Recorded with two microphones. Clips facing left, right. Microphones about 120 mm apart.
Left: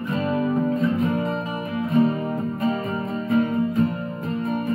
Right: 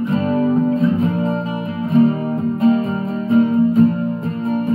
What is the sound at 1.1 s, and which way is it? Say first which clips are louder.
Music: right 5 dB; 30° right (ahead or behind).